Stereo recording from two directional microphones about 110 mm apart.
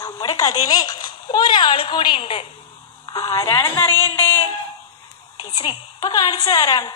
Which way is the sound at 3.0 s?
40° left (ahead or behind).